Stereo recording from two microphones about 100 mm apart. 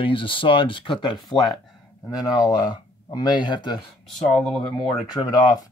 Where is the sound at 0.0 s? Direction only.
60° left (ahead or behind).